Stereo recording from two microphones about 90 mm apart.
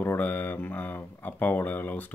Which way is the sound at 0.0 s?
20° left (ahead or behind).